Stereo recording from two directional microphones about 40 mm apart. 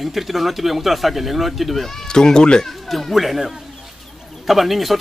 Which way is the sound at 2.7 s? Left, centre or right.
Centre.